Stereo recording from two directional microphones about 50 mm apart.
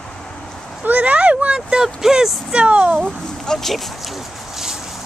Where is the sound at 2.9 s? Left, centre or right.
Centre.